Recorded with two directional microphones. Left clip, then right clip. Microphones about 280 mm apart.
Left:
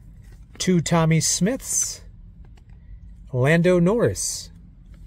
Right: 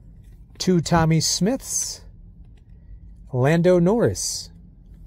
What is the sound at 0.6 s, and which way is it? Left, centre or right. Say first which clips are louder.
Speech: right 1 dB; centre.